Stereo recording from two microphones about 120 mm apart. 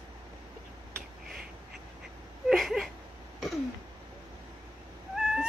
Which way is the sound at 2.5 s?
Centre (ahead or behind).